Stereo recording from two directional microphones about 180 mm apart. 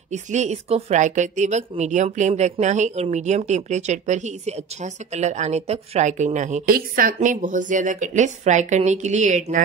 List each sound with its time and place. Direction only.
0.1 s speech: 40° right (ahead or behind)